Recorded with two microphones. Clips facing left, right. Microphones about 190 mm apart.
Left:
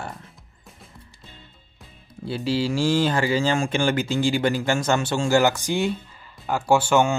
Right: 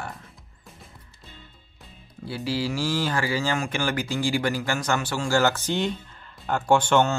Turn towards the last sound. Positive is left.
turn(degrees=10)  # may be behind; listen again after turning